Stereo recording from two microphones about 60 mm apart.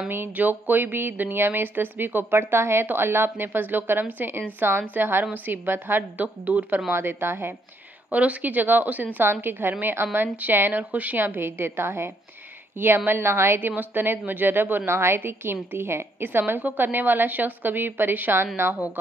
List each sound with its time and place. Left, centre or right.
0.1 s a woman's voice: right
6.9 s a woman's voice: right
8.1 s a woman's voice: right